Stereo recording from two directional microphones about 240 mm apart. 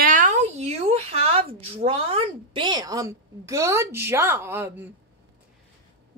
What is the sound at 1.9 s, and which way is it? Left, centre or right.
A woman's voice, right.